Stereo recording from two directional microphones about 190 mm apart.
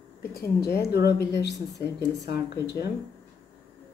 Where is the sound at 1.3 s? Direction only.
65° left (ahead or behind).